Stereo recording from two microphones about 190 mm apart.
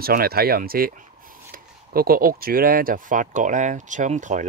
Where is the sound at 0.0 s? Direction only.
50° right (ahead or behind).